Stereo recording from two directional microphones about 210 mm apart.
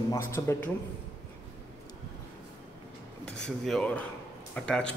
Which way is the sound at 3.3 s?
5° left (ahead or behind).